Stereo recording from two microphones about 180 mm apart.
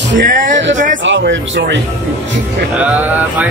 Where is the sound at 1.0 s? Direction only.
90° right.